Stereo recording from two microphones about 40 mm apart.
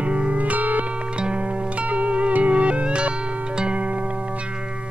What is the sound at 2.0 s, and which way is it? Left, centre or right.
Music, right.